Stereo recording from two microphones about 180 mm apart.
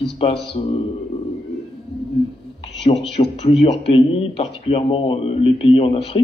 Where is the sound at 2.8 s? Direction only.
30° left (ahead or behind).